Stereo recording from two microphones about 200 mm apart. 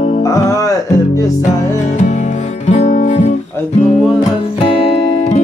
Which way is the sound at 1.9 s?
35° left (ahead or behind).